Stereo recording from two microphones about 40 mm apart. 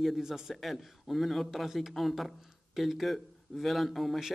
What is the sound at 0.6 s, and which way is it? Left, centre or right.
A man's voice, centre.